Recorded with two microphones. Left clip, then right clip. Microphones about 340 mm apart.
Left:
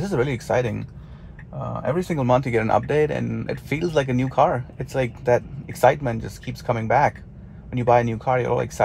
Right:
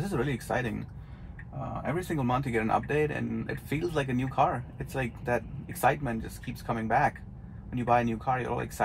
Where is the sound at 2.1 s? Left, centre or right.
Left.